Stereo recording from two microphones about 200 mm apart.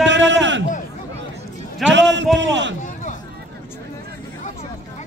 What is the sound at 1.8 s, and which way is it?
Speech, 65° right (ahead or behind).